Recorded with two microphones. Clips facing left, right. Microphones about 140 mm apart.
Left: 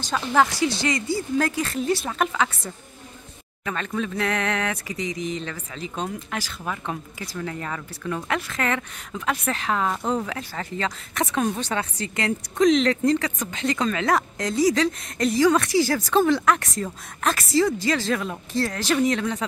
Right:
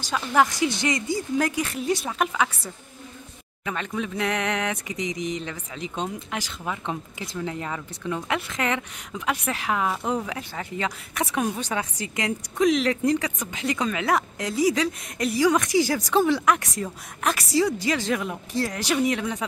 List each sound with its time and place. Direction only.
0.0 s speech: 10° right (ahead or behind)